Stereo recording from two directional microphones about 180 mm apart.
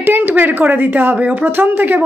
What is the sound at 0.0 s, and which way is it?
A woman's voice, 10° right (ahead or behind).